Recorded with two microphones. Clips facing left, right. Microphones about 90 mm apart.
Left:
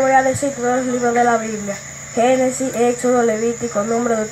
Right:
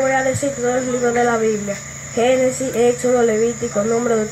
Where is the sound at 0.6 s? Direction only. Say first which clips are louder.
Even; 10° left (ahead or behind).